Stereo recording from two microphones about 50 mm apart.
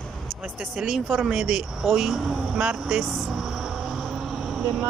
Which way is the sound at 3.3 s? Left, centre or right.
Centre.